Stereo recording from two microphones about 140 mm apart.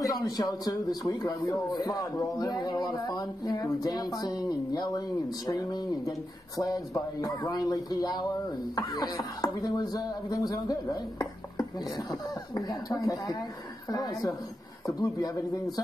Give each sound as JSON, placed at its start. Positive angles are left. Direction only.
{"t": 0.0, "sound": "a man's voice", "side_deg": 25}